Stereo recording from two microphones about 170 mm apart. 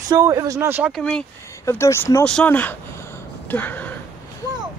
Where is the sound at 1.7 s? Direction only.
15° left (ahead or behind).